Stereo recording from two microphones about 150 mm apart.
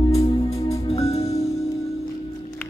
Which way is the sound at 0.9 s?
40° left (ahead or behind).